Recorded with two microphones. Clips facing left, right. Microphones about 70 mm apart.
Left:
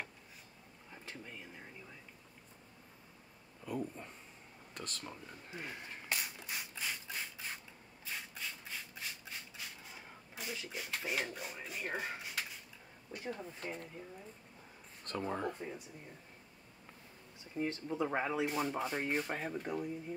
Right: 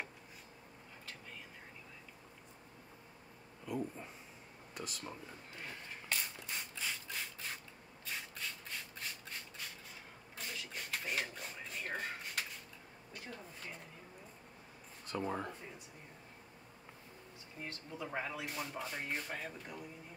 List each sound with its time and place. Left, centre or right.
3.6 s a sound: centre
4.7 s speech: centre
5.5 s rub: centre
10.3 s speech: centre
13.2 s speech: centre
15.0 s speech: centre
17.8 s speech: left